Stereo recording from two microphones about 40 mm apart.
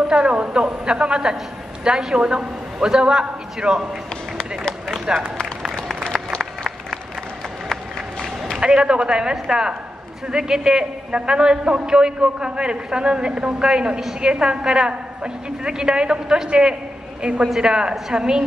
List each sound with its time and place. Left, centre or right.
0.1 s a man's voice: right
5.1 s a man's voice: right
6.0 s applause: centre
8.5 s a man's voice: right